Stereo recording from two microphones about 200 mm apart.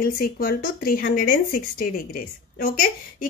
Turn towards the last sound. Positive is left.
turn(degrees=45)  # may be behind; listen again after turning